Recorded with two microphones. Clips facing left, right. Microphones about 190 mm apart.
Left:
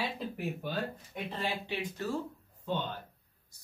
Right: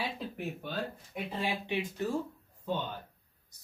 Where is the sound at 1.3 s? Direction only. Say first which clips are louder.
Right 3 dB; 20° right (ahead or behind).